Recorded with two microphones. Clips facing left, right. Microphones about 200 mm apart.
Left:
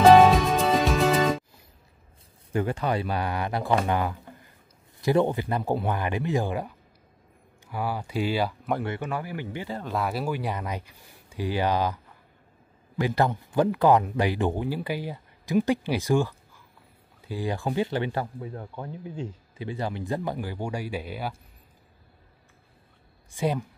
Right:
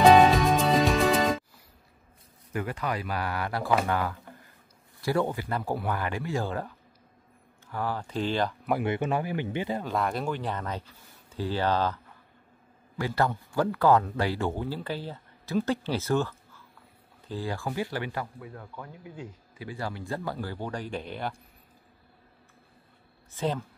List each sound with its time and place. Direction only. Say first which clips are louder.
0.0 s music: left 2 dB; centre (ahead or behind)
2.5 s speech: left 5 dB; 30° left (ahead or behind); by 8.5 s 10° left (ahead or behind)
8.8 s speech: right 3 dB; 20° right (ahead or behind)
9.8 s speech: left 1 dB; 5° left (ahead or behind)
23.3 s speech: left 3 dB; 10° left (ahead or behind)